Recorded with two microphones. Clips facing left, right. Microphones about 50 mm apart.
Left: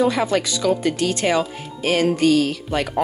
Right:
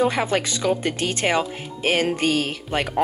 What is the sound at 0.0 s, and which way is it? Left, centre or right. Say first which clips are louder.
Speech: left 2 dB; right.